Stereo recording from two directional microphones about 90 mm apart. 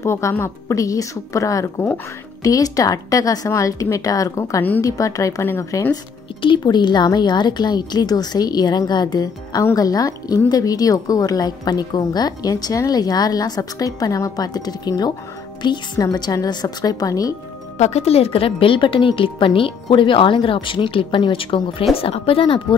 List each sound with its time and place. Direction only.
0.0 s speech: 30° left (ahead or behind)
6.4 s a woman's voice: 60° left (ahead or behind)
18.1 s a woman's voice: 90° left; by 21.8 s 70° left (ahead or behind)
21.9 s a woman's voice: 90° left